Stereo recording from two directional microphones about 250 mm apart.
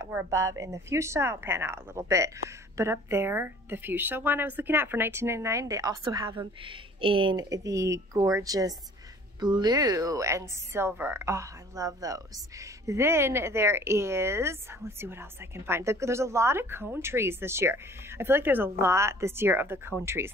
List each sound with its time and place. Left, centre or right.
0.0 s speech: centre